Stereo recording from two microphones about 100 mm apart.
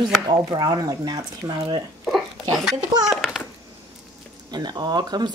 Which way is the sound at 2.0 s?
5° right (ahead or behind).